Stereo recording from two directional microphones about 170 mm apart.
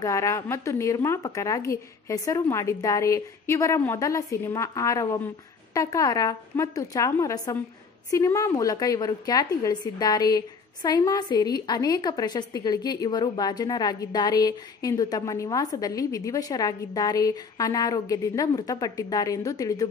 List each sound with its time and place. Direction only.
0.0 s a woman's voice: 20° left (ahead or behind)